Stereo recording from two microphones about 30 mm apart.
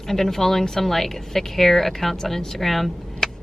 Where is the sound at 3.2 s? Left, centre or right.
Centre.